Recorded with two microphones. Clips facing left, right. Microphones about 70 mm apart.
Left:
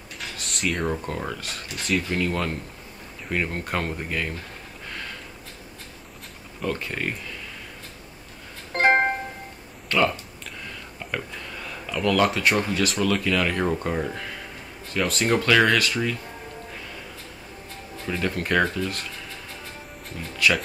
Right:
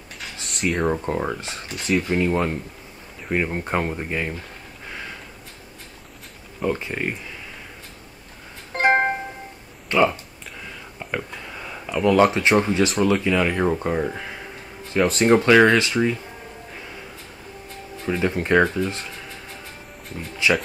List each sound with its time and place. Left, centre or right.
0.2 s a sound: centre
0.8 s speech: right
6.6 s speech: centre
8.7 s music: centre
9.8 s speech: centre
10.6 s a sound: centre
12.4 s speech: right
18.0 s speech: centre
20.2 s speech: centre